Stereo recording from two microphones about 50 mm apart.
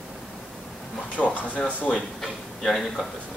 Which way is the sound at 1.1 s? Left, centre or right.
Left.